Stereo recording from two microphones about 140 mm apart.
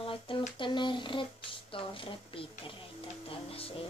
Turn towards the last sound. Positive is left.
turn(degrees=40)  # may be behind; listen again after turning